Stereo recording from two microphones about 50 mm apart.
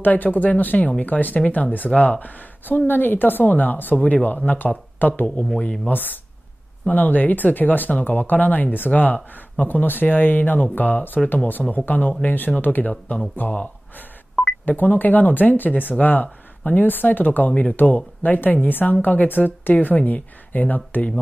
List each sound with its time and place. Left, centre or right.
0.0 s speech: left
2.9 s speech: left
12.9 s speech: centre
13.4 s speech: left